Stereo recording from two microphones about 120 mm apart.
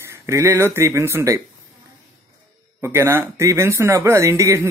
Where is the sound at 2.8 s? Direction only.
20° right (ahead or behind).